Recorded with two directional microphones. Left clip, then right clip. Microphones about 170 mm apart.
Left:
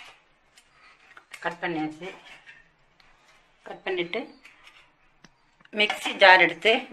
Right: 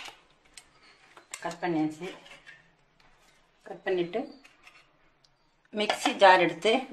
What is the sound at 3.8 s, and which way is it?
Speech, 40° right (ahead or behind).